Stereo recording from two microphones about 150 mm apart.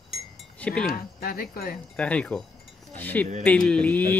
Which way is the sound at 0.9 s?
80° left.